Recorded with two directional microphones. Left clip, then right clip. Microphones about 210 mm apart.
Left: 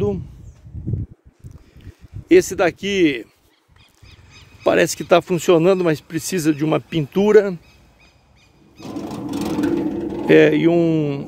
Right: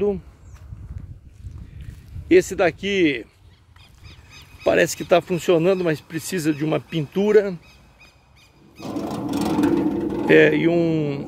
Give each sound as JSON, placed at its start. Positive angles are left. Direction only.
{"t": 2.2, "sound": "speech", "side_deg": 40}
{"t": 4.6, "sound": "speech", "side_deg": 40}
{"t": 8.8, "sound": "a sound", "side_deg": -10}
{"t": 10.2, "sound": "speech", "side_deg": 30}